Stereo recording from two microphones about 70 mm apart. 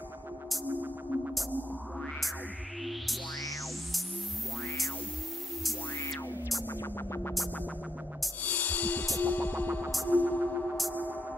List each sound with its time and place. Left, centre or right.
6.8 s music: left
8.5 s music: left